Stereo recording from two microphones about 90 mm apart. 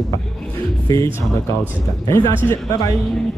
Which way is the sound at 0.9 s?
40° left (ahead or behind).